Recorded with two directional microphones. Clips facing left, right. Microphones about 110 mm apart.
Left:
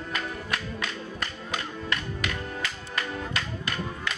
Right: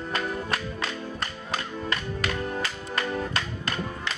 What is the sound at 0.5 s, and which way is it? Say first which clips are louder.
Music: right 2 dB; 35° right (ahead or behind).